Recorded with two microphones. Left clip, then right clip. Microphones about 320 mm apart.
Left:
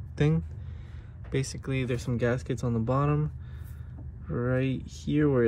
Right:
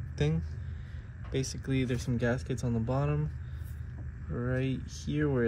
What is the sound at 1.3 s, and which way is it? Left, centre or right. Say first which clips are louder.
Speech: left 2 dB; left.